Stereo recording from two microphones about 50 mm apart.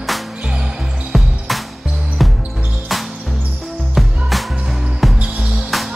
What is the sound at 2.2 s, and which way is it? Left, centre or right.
Basketball bounce, centre.